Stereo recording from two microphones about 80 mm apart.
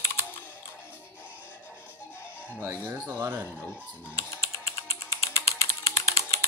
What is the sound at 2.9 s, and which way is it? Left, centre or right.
Speech, right.